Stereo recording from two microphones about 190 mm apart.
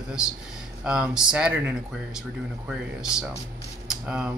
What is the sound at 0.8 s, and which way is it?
Speech, 5° right (ahead or behind).